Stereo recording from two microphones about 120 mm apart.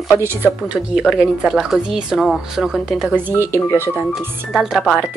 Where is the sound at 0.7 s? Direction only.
5° right (ahead or behind).